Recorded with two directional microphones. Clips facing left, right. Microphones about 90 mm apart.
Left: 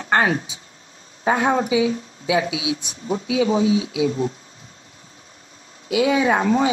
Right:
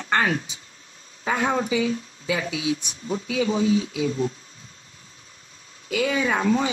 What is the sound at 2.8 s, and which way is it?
Speech, 30° left (ahead or behind).